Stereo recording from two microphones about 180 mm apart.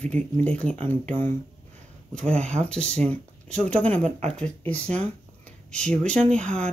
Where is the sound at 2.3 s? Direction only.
40° right (ahead or behind).